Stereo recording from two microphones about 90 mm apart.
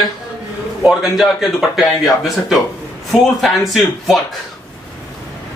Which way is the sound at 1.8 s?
Centre (ahead or behind).